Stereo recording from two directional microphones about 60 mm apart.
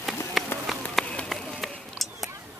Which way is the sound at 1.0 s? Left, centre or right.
Centre.